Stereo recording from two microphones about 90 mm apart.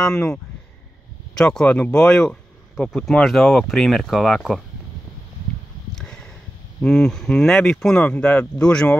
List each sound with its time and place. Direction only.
0.0 s speech: 10° left (ahead or behind)
5.9 s a sound: 10° left (ahead or behind)
6.8 s speech: 10° left (ahead or behind)